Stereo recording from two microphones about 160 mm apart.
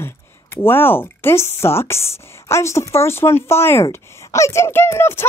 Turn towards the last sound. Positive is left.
turn(degrees=15)  # may be behind; listen again after turning